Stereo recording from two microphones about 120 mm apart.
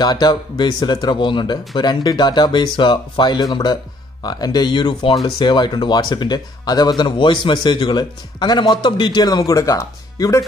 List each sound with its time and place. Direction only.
0.0 s speech: 35° left (ahead or behind)